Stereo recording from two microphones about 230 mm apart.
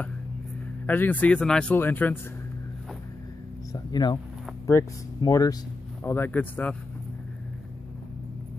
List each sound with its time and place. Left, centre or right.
0.8 s speech: centre
3.7 s speech: centre